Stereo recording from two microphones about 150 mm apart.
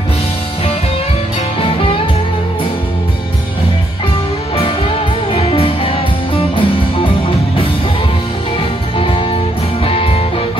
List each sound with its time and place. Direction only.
1.6 s music: 35° left (ahead or behind)
4.6 s music: 35° left (ahead or behind)
8.5 s music: 35° left (ahead or behind)